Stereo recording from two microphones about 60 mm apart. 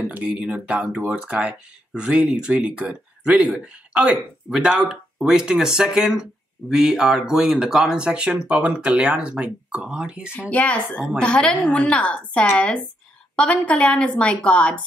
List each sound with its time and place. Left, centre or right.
0.1 s speech: centre
10.5 s a woman's voice: left